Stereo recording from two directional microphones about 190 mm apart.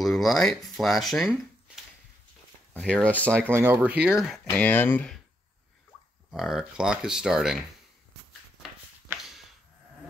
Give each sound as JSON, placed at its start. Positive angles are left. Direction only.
{"t": 0.0, "sound": "speech", "side_deg": 0}
{"t": 2.7, "sound": "speech", "side_deg": 5}
{"t": 3.3, "sound": "speech", "side_deg": -10}
{"t": 6.3, "sound": "speech", "side_deg": -5}